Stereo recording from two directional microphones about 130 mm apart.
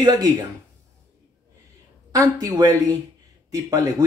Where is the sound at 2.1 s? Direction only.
25° right (ahead or behind).